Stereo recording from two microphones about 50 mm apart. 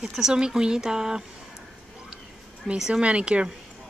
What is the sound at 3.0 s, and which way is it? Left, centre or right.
Speech, right.